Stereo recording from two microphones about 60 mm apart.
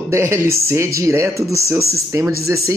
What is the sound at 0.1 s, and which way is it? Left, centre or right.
Speech, right.